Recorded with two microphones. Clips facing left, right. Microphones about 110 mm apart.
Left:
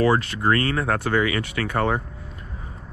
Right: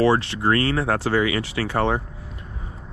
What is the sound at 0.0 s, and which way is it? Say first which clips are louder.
Speech: right 1 dB; 30° right (ahead or behind).